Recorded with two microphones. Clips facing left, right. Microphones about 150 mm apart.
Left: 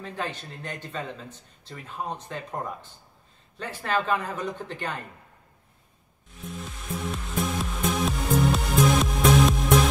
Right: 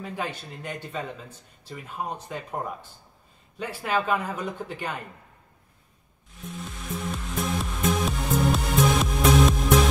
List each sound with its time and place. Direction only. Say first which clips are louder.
0.0 s speech: right 1 dB; 10° right (ahead or behind)
7.0 s music: left 1 dB; centre (ahead or behind)